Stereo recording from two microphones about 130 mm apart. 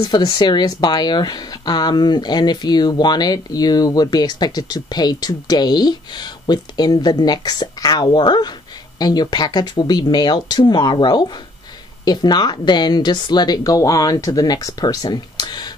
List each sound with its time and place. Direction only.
0.0 s speech: 30° left (ahead or behind)